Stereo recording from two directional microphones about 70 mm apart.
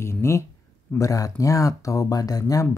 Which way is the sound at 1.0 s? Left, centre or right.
Left.